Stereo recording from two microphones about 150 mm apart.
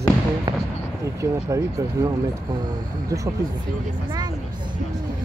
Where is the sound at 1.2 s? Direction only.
20° right (ahead or behind).